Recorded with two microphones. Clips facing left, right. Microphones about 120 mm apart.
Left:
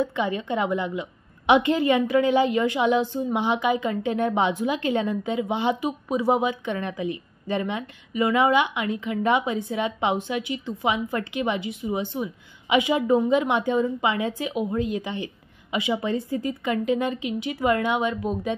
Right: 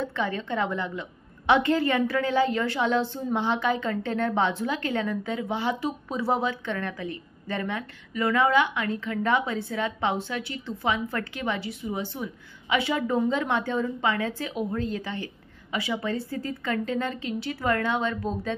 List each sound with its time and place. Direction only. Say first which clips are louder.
0.0 s a woman's voice: left 4 dB; 15° left (ahead or behind)